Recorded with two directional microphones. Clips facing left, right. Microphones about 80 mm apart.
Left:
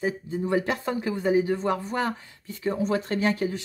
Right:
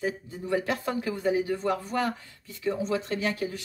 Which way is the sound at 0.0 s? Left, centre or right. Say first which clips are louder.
Left 4 dB; left.